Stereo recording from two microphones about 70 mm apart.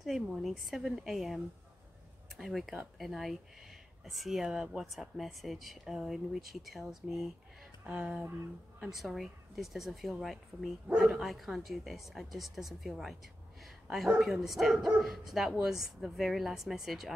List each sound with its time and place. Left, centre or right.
0.0 s speech: centre
7.8 s speech: centre
8.9 s speech: centre